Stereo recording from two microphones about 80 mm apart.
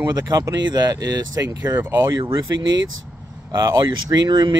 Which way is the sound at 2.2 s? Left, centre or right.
Right.